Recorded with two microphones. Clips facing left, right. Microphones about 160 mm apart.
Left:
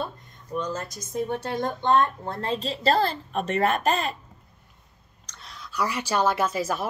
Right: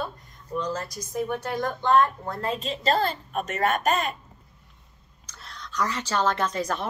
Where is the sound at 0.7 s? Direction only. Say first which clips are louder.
Even; 25° left (ahead or behind).